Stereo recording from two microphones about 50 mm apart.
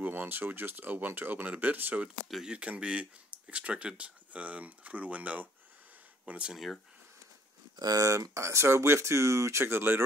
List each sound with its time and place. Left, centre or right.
0.0 s speech: right
2.4 s speech: right
8.0 s speech: right